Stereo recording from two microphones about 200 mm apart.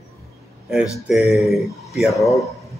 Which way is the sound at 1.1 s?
Centre (ahead or behind).